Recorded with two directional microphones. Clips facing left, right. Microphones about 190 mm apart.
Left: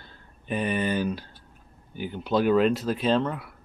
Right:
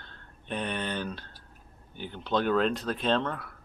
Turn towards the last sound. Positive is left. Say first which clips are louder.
# left 4 dB
turn(degrees=5)  # may be behind; listen again after turning